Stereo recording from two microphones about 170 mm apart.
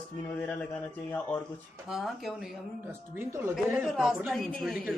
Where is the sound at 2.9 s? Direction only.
15° right (ahead or behind).